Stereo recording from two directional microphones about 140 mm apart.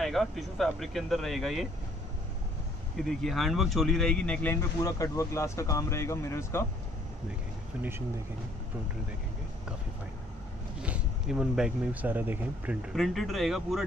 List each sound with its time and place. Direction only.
0.0 s speech: centre (ahead or behind)
3.0 s speech: centre (ahead or behind); by 6.6 s 20° left (ahead or behind)
10.8 s speech: 5° right (ahead or behind)
12.9 s speech: centre (ahead or behind)